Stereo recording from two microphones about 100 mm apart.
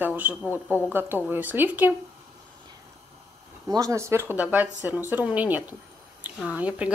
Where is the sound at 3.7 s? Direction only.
35° right (ahead or behind); by 6.9 s 15° right (ahead or behind).